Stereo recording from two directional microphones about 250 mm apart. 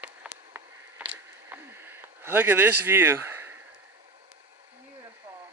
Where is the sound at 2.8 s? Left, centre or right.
Centre.